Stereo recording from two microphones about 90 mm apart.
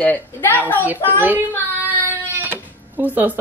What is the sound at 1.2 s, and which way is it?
Child singing, 20° right (ahead or behind).